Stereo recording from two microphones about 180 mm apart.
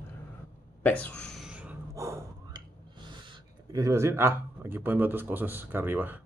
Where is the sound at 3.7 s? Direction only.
15° right (ahead or behind).